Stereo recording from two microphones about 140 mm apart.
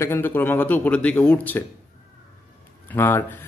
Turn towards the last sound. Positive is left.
turn(degrees=15)  # may be behind; listen again after turning